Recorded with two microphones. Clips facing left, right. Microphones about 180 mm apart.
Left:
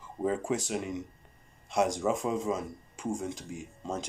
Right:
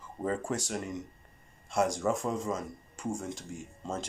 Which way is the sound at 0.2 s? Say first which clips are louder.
Left 3 dB; 5° left (ahead or behind).